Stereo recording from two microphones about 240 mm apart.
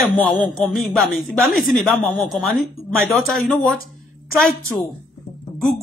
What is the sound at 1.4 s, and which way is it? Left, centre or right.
Speech, left.